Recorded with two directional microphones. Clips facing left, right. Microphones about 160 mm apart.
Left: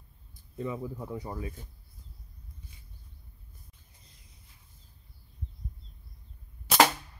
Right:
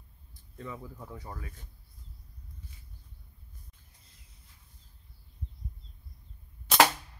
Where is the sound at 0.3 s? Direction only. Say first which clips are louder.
Left 7 dB; 15° left (ahead or behind).